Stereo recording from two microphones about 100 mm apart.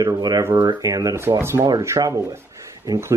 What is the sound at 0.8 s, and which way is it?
Speech, 35° right (ahead or behind).